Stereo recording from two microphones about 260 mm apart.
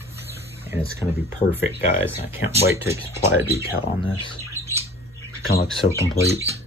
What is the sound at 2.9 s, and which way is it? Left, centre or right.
Speech, centre.